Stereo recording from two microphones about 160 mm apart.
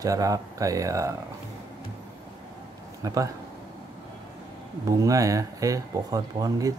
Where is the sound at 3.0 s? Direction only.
20° right (ahead or behind).